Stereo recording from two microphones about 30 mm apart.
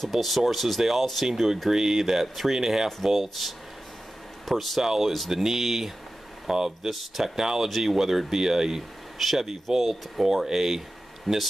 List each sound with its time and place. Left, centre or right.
0.1 s speech: centre
2.6 s speech: centre
3.0 s speech: centre
4.8 s speech: centre
6.4 s speech: centre
6.9 s speech: centre
7.3 s speech: centre